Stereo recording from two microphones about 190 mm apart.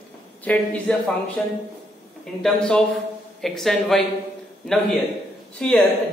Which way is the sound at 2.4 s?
5° left (ahead or behind).